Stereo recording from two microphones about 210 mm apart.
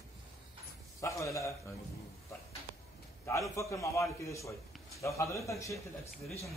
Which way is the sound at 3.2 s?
15° left (ahead or behind).